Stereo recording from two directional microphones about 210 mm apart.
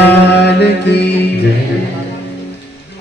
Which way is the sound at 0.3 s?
55° left (ahead or behind).